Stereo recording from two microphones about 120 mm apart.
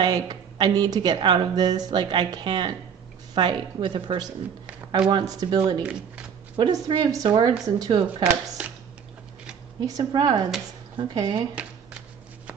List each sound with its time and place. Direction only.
0.0 s a woman's voice: 40° right (ahead or behind)
5.8 s speech: 10° right (ahead or behind)
6.5 s speech: 40° right (ahead or behind)
8.2 s speech: 10° right (ahead or behind)
9.8 s speech: 30° right (ahead or behind)